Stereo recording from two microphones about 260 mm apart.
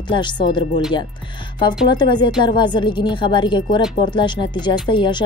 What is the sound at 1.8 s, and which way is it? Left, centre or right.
Speech, centre.